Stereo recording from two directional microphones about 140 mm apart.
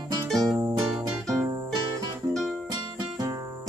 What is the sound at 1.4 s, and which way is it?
Music, 25° right (ahead or behind).